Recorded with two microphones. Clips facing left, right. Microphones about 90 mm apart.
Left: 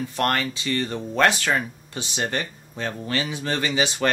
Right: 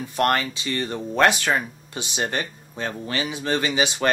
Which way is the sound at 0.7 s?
10° right (ahead or behind).